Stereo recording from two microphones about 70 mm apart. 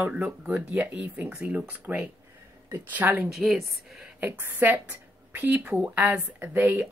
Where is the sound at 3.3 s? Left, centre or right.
Centre.